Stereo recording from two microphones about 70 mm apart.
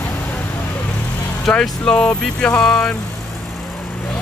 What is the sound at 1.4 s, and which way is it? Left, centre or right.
Speech, centre.